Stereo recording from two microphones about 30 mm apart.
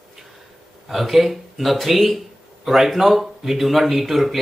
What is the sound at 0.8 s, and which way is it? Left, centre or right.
Speech, centre.